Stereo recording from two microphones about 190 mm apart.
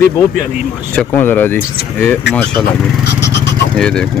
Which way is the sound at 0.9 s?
10° left (ahead or behind).